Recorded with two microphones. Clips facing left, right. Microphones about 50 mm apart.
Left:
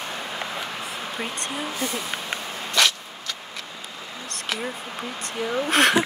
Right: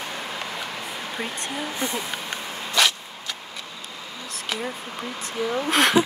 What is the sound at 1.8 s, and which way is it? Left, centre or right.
Speech, right.